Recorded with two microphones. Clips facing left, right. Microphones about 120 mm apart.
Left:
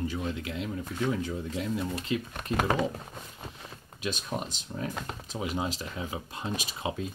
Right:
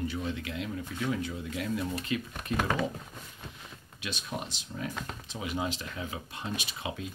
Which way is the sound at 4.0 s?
40° left (ahead or behind).